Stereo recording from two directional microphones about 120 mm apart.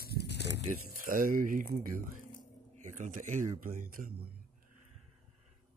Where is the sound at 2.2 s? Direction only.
90° left.